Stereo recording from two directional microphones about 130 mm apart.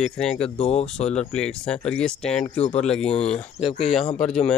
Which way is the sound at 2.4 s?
55° left (ahead or behind).